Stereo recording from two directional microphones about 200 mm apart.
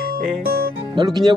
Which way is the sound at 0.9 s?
20° right (ahead or behind).